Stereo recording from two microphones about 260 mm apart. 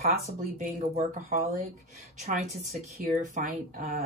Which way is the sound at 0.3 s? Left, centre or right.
Right.